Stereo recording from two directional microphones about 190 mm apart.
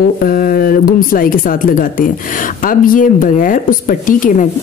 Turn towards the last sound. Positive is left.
turn(degrees=45)  # may be behind; listen again after turning